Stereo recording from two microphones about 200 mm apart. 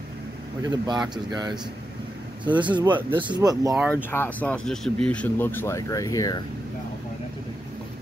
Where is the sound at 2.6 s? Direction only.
25° right (ahead or behind).